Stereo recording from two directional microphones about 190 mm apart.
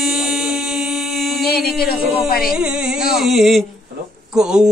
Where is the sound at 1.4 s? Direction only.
55° left (ahead or behind).